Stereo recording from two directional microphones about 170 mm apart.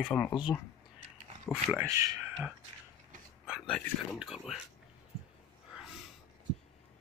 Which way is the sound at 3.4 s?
Centre (ahead or behind).